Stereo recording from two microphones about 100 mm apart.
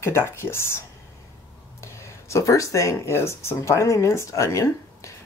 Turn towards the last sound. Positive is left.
turn(degrees=30)  # may be behind; listen again after turning